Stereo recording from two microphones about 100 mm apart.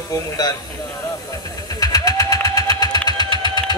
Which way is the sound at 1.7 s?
40° left (ahead or behind).